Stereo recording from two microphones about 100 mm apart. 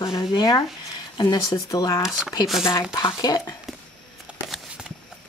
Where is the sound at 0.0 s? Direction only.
35° left (ahead or behind).